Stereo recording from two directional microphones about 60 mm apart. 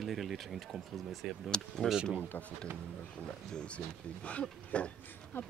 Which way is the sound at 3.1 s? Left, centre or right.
Centre.